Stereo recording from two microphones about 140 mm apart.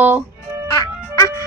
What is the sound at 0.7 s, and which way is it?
Music, 20° left (ahead or behind).